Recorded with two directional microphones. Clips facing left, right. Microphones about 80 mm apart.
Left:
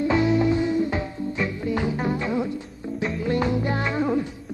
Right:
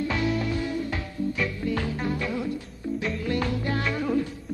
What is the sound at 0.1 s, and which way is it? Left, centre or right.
Music, left.